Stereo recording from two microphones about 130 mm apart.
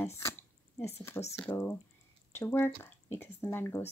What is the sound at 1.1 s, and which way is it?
Speech, 25° left (ahead or behind).